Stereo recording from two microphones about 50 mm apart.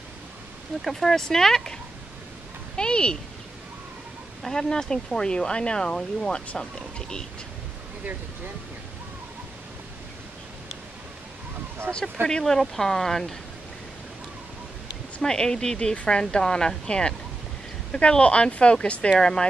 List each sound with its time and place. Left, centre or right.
0.8 s a woman's voice: centre
4.4 s a woman's voice: centre
11.9 s speech: right
12.3 s a woman's voice: centre
15.2 s a woman's voice: centre
19.1 s a woman's voice: centre